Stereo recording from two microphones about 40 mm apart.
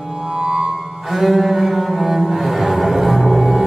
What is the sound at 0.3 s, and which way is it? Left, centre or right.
Music, centre.